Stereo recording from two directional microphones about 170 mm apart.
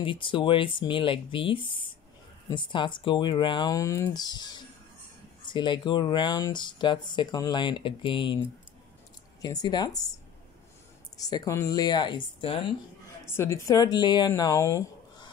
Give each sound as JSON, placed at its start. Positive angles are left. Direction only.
{"t": 0.0, "sound": "speech", "side_deg": 30}
{"t": 9.4, "sound": "speech", "side_deg": 20}
{"t": 11.1, "sound": "speech", "side_deg": 20}
{"t": 13.3, "sound": "speech", "side_deg": 15}